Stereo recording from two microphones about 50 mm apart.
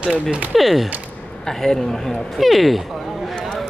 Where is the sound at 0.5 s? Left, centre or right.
Centre.